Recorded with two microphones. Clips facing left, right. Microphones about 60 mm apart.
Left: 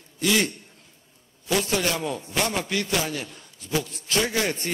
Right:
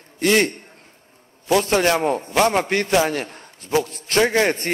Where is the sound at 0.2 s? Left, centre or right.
Right.